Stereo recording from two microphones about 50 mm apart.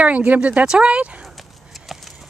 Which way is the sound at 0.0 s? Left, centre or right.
Right.